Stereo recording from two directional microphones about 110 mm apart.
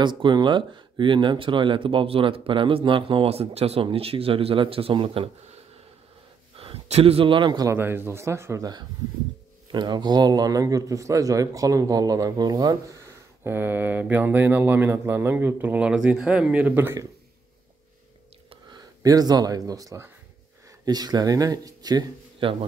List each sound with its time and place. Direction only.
0.0 s speech: 45° right (ahead or behind)
7.6 s speech: 20° right (ahead or behind)
9.7 s a man's voice: 45° right (ahead or behind)
13.4 s speech: 20° right (ahead or behind)
18.8 s a man's voice: 35° right (ahead or behind)
22.4 s speech: 55° right (ahead or behind)